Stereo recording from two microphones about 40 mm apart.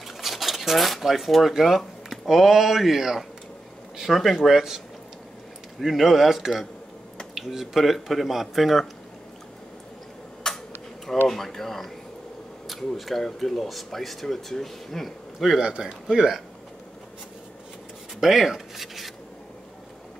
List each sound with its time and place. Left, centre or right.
0.2 s speech: centre
10.4 s tick-tock: centre
11.2 s speech: centre
15.6 s a man's voice: right
16.1 s speech: centre
18.2 s a sound: centre